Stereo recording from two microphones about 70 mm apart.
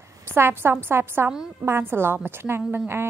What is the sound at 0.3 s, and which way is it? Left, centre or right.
A woman's voice, right.